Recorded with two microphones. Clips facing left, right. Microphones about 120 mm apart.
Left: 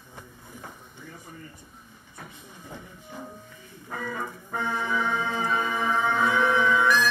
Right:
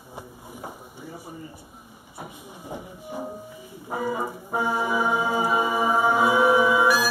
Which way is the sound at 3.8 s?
20° right (ahead or behind).